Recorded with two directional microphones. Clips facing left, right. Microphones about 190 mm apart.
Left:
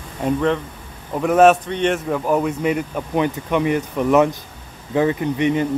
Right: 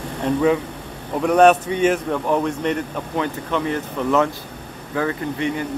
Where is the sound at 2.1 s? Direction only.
5° left (ahead or behind).